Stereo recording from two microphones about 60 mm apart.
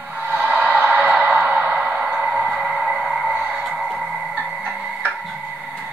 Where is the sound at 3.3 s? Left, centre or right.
Right.